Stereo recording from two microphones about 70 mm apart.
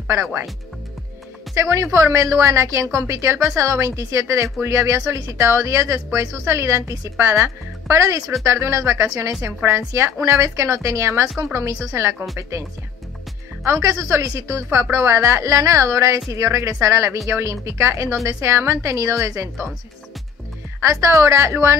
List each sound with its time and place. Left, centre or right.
0.1 s a woman's voice: right
1.5 s a woman's voice: right
13.7 s speech: right
14.7 s a woman's voice: right
20.8 s speech: right